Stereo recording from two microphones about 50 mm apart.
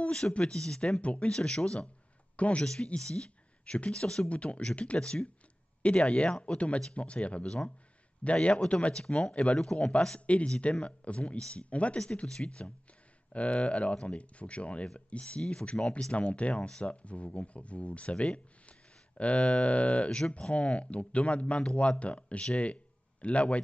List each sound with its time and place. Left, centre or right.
0.0 s speech: left
2.3 s speech: left
2.6 s speech: centre